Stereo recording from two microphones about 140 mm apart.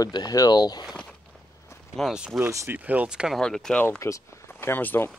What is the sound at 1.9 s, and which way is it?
Speech, centre (ahead or behind).